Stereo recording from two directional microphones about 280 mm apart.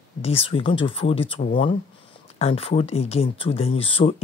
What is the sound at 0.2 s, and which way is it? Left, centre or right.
Speech, left.